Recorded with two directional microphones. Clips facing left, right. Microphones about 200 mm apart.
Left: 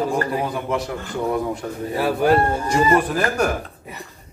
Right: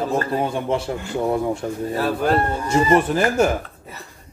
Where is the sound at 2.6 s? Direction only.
25° right (ahead or behind).